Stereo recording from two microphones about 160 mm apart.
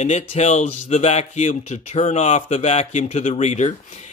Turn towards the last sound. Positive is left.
turn(degrees=45)  # may be behind; listen again after turning